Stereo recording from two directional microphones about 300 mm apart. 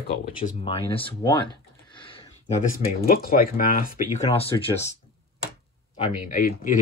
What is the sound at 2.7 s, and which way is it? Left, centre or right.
Speech, left.